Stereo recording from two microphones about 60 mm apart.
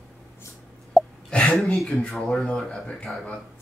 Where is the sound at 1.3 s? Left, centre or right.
Centre.